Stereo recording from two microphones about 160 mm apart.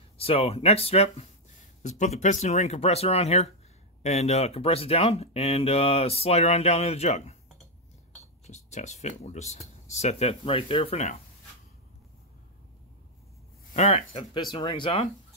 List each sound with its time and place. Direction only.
0.2 s speech: 40° left (ahead or behind)
8.5 s speech: 45° left (ahead or behind)
13.7 s speech: 40° left (ahead or behind)